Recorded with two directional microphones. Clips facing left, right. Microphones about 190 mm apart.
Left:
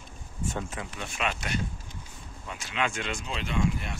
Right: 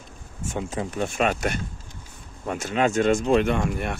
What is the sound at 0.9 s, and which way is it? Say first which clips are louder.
Speech: right 9 dB; 45° right (ahead or behind).